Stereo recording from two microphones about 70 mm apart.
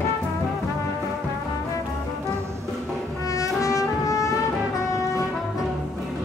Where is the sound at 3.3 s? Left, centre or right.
Left.